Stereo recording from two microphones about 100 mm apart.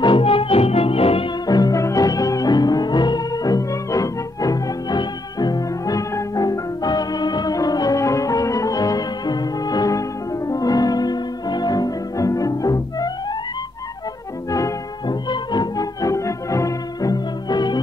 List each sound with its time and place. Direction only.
0.0 s music: 65° left (ahead or behind)
1.5 s music: 35° left (ahead or behind)
14.5 s music: 35° left (ahead or behind)
15.2 s music: 45° left (ahead or behind)